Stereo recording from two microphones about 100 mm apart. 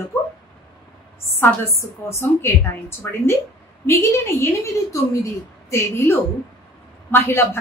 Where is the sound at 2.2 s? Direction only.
25° left (ahead or behind).